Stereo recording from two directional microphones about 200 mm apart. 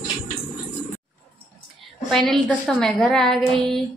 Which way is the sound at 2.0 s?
Centre (ahead or behind).